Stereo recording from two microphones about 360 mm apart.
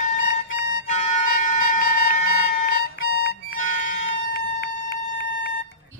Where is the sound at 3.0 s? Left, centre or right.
Left.